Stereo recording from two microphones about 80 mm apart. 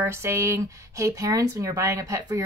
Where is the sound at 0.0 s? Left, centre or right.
Right.